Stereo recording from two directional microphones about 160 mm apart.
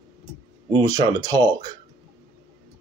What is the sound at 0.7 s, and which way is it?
Speech, 25° right (ahead or behind).